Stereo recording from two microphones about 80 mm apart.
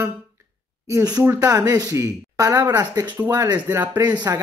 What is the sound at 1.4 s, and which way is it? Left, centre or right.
Speech, right.